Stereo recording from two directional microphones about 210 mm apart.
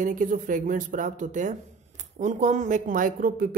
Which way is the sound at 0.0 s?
40° right (ahead or behind).